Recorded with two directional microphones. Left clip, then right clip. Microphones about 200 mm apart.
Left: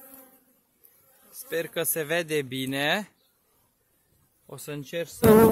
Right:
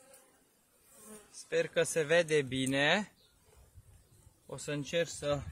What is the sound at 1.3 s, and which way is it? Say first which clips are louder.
Speech: left 2 dB; 55° left (ahead or behind).